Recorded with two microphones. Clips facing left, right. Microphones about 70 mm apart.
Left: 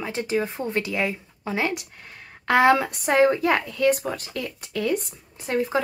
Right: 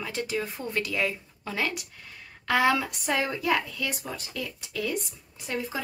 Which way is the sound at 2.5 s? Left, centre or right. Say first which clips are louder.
Left 6 dB; left.